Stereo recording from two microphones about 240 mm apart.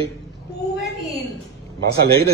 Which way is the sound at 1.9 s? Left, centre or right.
Right.